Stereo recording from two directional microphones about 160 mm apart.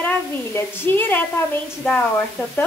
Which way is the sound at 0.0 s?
15° left (ahead or behind).